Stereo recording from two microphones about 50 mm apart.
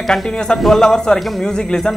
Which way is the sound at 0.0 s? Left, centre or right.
Centre.